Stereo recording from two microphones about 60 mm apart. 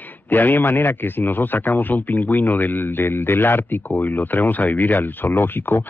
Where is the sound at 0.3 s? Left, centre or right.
Left.